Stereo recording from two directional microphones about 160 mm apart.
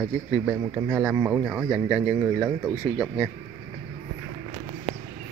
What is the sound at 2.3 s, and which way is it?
Speech, 20° right (ahead or behind).